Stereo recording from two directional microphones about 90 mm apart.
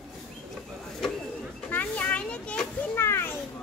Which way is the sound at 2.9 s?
25° left (ahead or behind).